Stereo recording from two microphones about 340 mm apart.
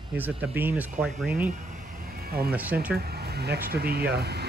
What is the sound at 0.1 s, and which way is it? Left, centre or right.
Speech, centre.